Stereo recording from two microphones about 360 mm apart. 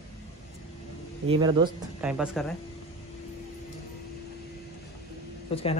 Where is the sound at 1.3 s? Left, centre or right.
Centre.